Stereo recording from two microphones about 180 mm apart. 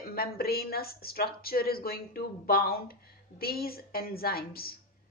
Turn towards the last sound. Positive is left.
turn(degrees=55)  # may be behind; listen again after turning